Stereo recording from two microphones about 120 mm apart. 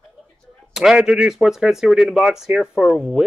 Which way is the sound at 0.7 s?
5° right (ahead or behind).